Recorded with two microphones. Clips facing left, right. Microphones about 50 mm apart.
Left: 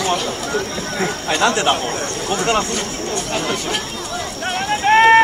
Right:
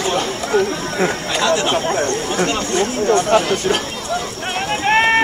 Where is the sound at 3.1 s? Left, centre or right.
Right.